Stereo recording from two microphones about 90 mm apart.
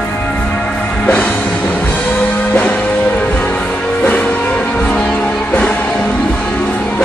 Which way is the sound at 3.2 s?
15° left (ahead or behind).